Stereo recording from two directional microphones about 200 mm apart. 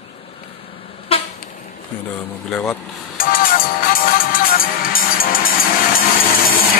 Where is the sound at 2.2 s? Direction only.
5° left (ahead or behind).